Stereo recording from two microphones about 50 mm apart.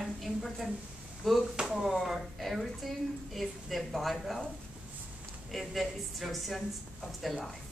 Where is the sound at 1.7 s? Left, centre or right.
Centre.